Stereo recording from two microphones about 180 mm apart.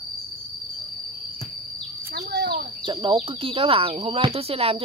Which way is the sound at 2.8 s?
30° right (ahead or behind).